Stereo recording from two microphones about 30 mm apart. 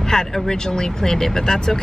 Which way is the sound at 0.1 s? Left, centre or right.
Left.